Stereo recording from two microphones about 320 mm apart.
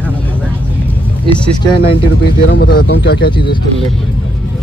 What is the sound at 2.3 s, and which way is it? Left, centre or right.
Speech, left.